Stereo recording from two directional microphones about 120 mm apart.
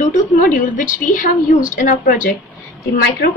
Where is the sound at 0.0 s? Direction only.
90° left.